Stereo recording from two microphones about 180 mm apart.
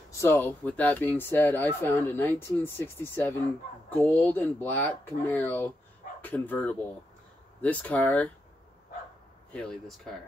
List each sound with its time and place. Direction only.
0.1 s speech: 15° left (ahead or behind)
9.5 s speech: 5° left (ahead or behind)